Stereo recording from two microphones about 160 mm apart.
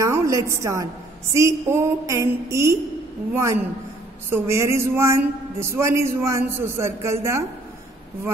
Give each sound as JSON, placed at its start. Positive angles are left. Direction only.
{"t": 0.0, "sound": "a woman's voice", "side_deg": -20}
{"t": 4.3, "sound": "a man's voice", "side_deg": -15}